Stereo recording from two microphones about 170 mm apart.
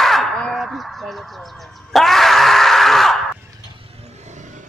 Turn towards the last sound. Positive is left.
turn(degrees=-45)  # may be behind; listen again after turning